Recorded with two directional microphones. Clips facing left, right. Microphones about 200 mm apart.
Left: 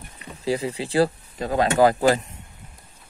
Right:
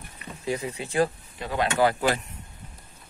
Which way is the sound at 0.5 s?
30° left (ahead or behind).